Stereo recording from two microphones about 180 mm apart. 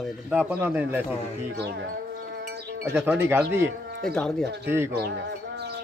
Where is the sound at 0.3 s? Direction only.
10° right (ahead or behind).